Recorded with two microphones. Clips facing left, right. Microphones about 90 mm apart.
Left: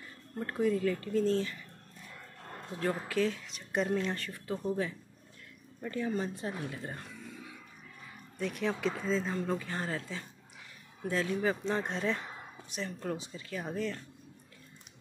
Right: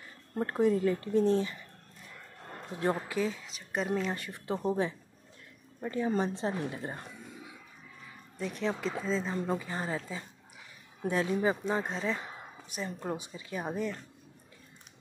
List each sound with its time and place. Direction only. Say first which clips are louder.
0.4 s speech: right 3 dB; 30° right (ahead or behind)
2.7 s speech: right 3 dB; 20° right (ahead or behind)
3.1 s speech: left 1 dB; 10° right (ahead or behind)
4.1 s speech: right 1 dB; 15° right (ahead or behind)
4.5 s speech: right 3 dB; 25° right (ahead or behind)
8.4 s speech: even; centre (ahead or behind)
9.4 s speech: right 1 dB; 15° right (ahead or behind)
12.8 s speech: right 1 dB; 15° right (ahead or behind)